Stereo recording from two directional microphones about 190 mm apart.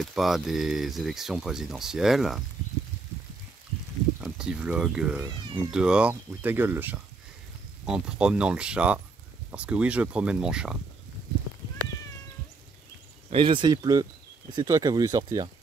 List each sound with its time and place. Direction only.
0.0 s speech: centre (ahead or behind)
4.2 s speech: 5° right (ahead or behind)
13.3 s speech: 25° right (ahead or behind)